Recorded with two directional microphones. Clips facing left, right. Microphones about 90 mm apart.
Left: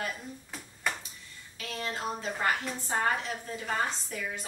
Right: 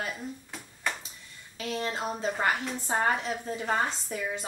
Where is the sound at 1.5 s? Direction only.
25° right (ahead or behind).